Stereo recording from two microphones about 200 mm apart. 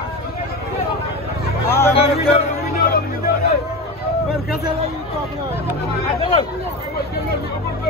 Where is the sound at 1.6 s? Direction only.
15° left (ahead or behind).